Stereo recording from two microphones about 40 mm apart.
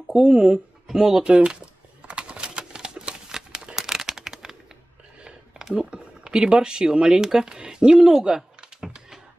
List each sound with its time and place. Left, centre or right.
0.1 s speech: centre
0.8 s a sound: centre
5.8 s speech: right